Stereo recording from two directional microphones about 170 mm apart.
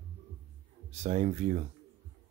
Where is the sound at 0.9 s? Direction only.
40° right (ahead or behind).